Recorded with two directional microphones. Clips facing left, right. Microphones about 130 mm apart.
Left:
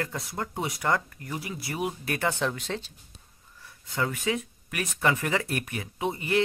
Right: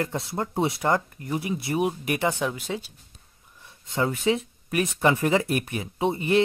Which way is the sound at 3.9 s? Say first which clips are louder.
Right 5 dB; 25° right (ahead or behind).